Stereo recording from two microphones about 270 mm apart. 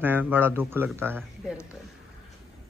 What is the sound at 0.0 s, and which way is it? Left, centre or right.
Speech, centre.